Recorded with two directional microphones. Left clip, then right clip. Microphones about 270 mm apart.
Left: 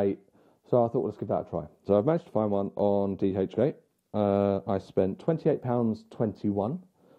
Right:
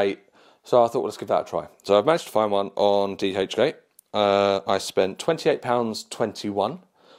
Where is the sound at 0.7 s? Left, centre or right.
Centre.